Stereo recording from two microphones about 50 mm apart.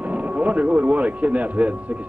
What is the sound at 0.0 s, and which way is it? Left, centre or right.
Speech, right.